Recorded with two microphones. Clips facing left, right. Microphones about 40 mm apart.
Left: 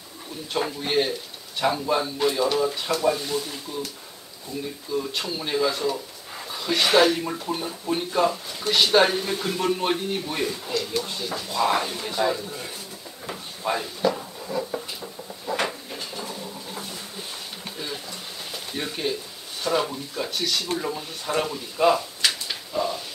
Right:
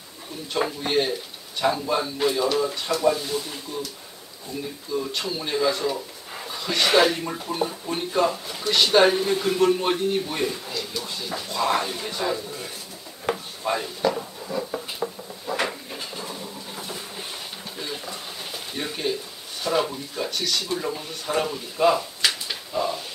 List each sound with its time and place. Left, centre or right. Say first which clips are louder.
0.6 s speech: right 1 dB; centre
13.3 s drawer open or close: right 9 dB; right
13.7 s speech: even; centre
15.0 s a sound: right 6 dB; right
15.4 s a sound: even; centre
19.6 s speech: right 1 dB; centre